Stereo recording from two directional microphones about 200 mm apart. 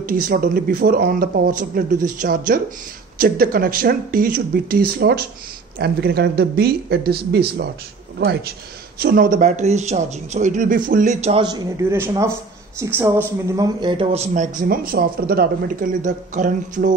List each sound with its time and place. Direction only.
0.0 s speech: 45° right (ahead or behind)
11.4 s speech: 20° right (ahead or behind); by 16.9 s 40° right (ahead or behind)